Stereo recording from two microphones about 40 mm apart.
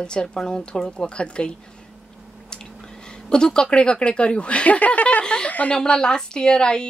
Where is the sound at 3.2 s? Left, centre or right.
Centre; by 5.7 s left.